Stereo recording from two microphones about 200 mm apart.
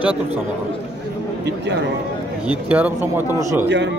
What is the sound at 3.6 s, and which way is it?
Speech, 60° right (ahead or behind).